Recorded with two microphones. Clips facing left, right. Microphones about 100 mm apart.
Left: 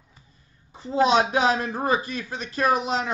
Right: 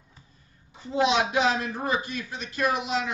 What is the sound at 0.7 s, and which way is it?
Speech, 35° left (ahead or behind).